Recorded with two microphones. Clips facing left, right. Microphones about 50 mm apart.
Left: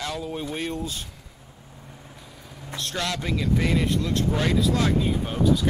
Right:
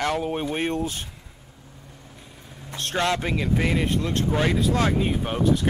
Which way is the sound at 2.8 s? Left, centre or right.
Right.